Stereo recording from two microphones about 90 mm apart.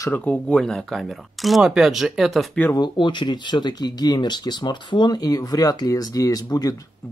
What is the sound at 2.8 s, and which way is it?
Speech, 60° left (ahead or behind).